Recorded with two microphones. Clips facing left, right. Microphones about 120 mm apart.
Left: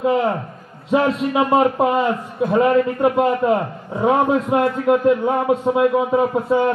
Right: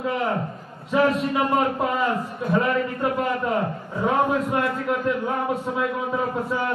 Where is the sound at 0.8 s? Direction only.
25° left (ahead or behind).